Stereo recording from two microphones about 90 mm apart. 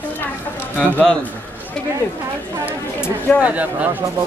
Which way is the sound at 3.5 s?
15° right (ahead or behind).